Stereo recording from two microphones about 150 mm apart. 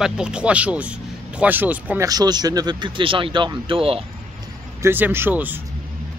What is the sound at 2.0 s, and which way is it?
Speech, 25° right (ahead or behind).